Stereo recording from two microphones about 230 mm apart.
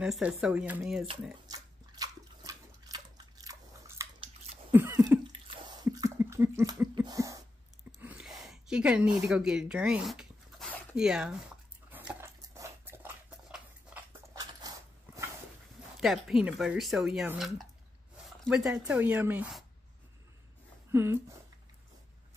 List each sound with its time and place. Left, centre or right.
0.0 s speech: centre
1.5 s a sound: centre
4.7 s cough: centre
8.0 s a sound: centre
9.3 s zipper: centre
14.4 s dog: centre
16.0 s speech: centre
20.9 s speech: centre